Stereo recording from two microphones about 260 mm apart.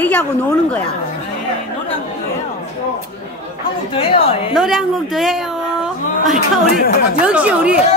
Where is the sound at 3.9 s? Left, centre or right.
Left.